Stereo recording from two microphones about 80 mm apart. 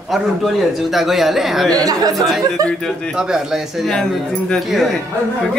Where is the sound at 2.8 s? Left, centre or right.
Centre.